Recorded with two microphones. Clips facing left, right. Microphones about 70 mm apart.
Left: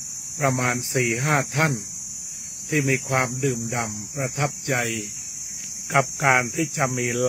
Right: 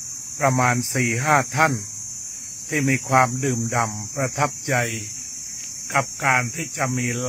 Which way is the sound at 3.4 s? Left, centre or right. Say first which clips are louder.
Right 3 dB; right.